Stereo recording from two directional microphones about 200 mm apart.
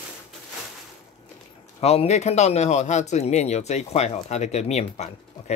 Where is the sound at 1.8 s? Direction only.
30° left (ahead or behind).